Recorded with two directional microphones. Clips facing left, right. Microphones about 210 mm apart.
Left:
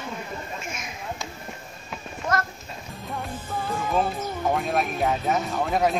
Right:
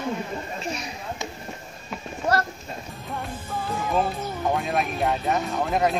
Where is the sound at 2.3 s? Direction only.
35° right (ahead or behind).